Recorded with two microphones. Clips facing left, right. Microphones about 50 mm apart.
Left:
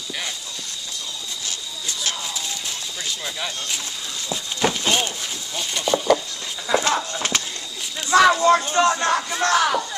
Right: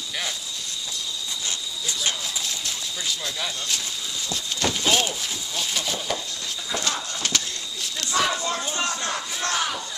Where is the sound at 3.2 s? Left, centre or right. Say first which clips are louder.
Left 1 dB; centre.